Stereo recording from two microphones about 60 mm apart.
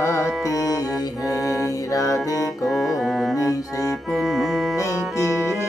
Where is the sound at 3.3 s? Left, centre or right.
Left.